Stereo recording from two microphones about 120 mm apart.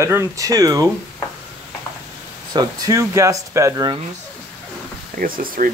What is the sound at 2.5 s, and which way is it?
Speech, 35° right (ahead or behind).